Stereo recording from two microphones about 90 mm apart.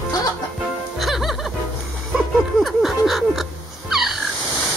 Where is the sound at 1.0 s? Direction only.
Centre (ahead or behind).